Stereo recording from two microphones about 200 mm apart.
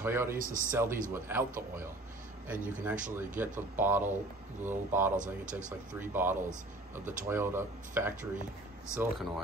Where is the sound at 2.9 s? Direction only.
40° right (ahead or behind).